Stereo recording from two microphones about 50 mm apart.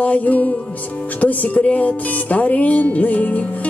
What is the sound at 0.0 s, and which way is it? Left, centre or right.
Music, left.